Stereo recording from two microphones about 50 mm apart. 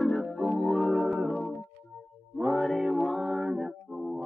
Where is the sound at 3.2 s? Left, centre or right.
Centre.